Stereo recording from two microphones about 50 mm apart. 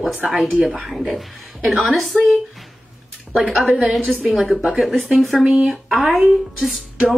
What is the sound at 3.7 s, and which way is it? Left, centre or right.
Speech, right.